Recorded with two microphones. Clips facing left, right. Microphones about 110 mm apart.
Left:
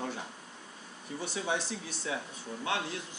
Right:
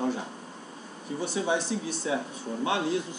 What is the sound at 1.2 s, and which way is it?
Speech, 5° right (ahead or behind).